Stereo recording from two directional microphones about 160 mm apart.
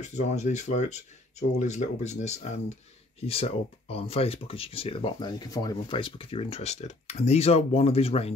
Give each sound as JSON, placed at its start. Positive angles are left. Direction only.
{"t": 0.0, "sound": "speech", "side_deg": 45}